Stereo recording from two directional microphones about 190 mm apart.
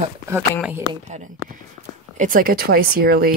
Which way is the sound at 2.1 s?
45° right (ahead or behind).